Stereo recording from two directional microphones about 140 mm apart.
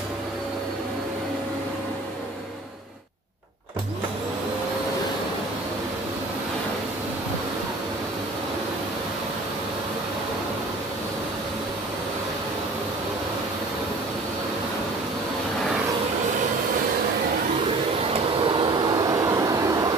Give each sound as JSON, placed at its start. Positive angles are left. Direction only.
{"t": 18.6, "sound": "vehicle", "side_deg": -30}